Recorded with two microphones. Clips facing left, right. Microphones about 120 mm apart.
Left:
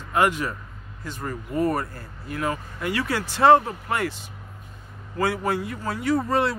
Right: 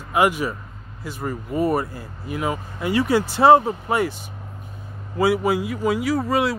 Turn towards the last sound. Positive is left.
turn(degrees=-5)  # may be behind; listen again after turning